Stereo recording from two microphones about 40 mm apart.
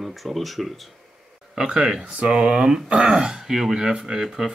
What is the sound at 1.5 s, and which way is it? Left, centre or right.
Speech, centre.